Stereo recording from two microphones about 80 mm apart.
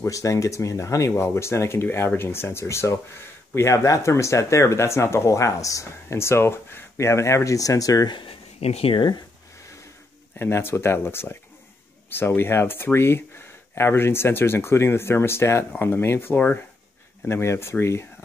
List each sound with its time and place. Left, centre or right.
0.0 s speech: left
8.9 s speech: left
10.3 s speech: left